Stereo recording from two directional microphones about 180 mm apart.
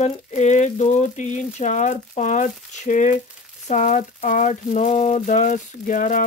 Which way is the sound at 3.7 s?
40° left (ahead or behind).